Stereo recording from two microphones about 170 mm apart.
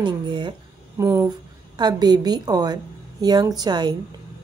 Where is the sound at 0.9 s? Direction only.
15° right (ahead or behind).